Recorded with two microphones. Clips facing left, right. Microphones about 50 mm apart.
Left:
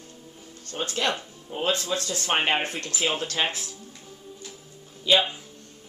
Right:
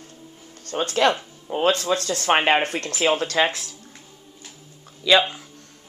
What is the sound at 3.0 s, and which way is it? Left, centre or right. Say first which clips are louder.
Speech: right 6 dB; right.